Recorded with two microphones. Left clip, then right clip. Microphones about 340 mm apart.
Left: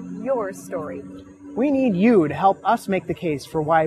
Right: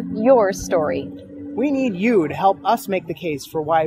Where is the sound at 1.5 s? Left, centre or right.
Left.